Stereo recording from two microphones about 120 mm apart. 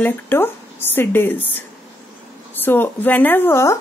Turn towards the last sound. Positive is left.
turn(degrees=20)  # may be behind; listen again after turning